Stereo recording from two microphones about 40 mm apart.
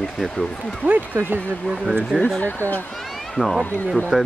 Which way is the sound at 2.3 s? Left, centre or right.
Left.